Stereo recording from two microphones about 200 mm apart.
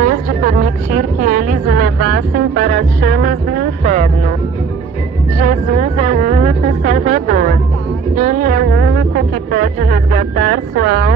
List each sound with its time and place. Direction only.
0.0 s a sound: 40° right (ahead or behind)
5.4 s music: 45° right (ahead or behind)
8.6 s music: 60° right (ahead or behind)